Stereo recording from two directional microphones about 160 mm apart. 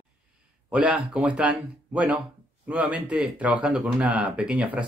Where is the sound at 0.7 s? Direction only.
5° right (ahead or behind).